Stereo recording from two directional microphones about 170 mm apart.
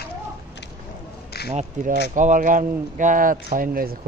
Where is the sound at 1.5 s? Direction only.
40° right (ahead or behind).